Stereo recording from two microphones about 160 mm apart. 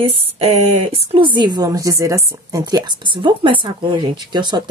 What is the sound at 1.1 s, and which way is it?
Speech, 30° right (ahead or behind).